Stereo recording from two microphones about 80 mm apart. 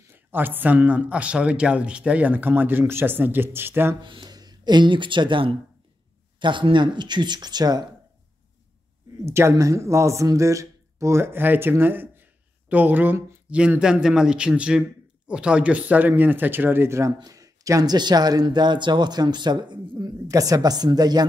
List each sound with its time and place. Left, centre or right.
0.1 s speech: right
4.0 s speech: right
9.2 s speech: right
11.7 s a sound: right
13.6 s a man's voice: centre; by 17.0 s right
17.0 s speech: right
17.9 s speech: right
20.1 s a woman's voice: right